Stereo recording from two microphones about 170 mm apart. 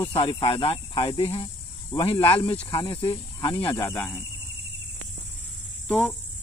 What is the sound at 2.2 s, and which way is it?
Cricket, 30° left (ahead or behind).